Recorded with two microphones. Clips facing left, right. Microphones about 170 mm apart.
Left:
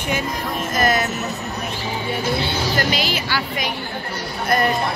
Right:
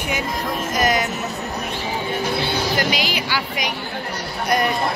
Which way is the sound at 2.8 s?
15° right (ahead or behind).